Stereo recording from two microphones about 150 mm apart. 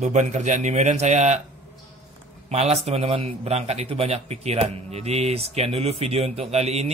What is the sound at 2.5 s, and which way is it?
Speech, 45° right (ahead or behind).